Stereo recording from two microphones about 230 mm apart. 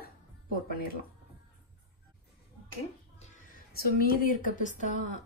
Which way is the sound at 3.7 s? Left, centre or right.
Left.